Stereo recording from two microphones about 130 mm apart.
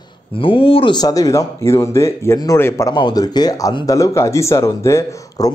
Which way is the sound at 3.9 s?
25° left (ahead or behind).